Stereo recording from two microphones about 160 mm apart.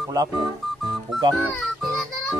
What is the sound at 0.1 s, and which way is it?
Speech, 20° right (ahead or behind).